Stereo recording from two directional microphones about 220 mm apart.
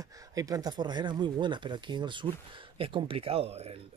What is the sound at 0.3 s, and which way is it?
Speech, 15° right (ahead or behind).